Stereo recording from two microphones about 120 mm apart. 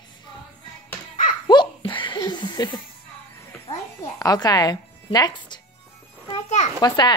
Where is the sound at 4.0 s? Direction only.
30° left (ahead or behind).